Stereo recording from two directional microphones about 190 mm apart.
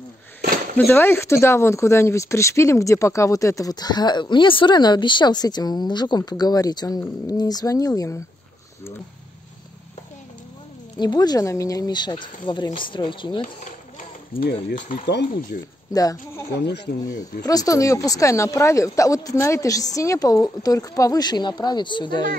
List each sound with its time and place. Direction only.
0.7 s speech: 10° left (ahead or behind)
11.0 s speech: 20° left (ahead or behind)
13.7 s run: 40° left (ahead or behind)
15.9 s speech: 20° left (ahead or behind)
16.5 s speech: 65° left (ahead or behind)
17.5 s speech: 20° left (ahead or behind)